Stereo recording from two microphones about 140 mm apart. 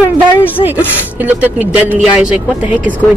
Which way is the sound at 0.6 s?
10° right (ahead or behind).